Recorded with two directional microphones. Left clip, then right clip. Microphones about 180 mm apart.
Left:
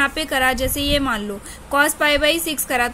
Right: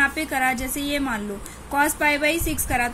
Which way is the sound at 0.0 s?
50° left (ahead or behind).